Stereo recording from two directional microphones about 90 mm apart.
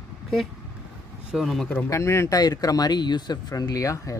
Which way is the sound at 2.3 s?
45° left (ahead or behind).